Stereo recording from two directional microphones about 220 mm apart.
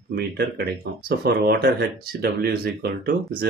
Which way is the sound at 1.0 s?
45° right (ahead or behind).